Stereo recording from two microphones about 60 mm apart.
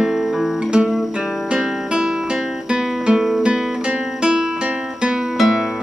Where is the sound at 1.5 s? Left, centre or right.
Centre.